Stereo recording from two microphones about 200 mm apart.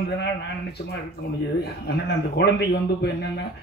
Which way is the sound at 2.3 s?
55° left (ahead or behind).